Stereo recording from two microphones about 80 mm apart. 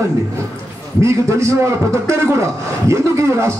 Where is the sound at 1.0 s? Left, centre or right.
Right.